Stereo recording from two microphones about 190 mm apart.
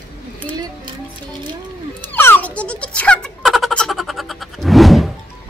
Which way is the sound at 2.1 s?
10° left (ahead or behind).